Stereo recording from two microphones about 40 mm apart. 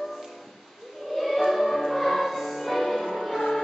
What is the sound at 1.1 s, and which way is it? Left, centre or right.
Music, centre.